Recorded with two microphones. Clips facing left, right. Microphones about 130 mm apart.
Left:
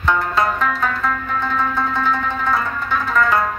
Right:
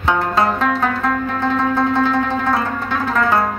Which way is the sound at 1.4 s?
35° right (ahead or behind).